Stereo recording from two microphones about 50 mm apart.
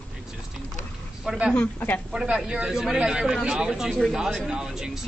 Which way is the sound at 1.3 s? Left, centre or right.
Centre.